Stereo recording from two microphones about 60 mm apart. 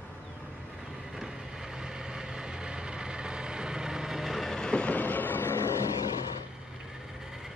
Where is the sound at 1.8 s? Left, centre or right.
Centre.